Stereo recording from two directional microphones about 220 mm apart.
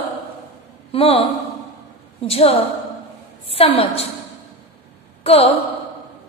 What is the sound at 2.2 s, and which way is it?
A woman's voice, 25° left (ahead or behind).